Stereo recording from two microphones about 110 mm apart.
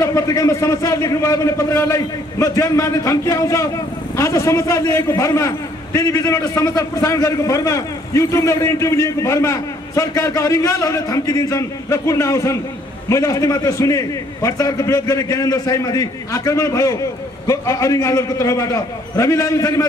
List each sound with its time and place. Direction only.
0.0 s a man's voice: 30° left (ahead or behind)